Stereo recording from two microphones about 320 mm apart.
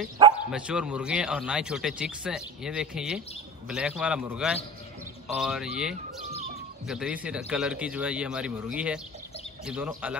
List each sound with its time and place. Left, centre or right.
0.5 s speech: centre